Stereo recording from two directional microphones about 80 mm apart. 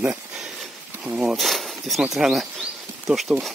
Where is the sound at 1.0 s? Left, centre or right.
Centre.